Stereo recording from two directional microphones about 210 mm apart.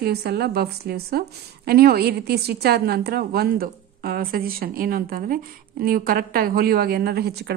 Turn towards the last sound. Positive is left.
turn(degrees=-50)  # may be behind; listen again after turning